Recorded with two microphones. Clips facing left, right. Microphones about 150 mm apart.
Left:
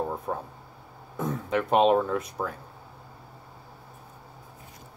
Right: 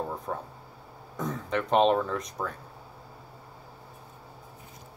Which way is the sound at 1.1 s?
5° left (ahead or behind).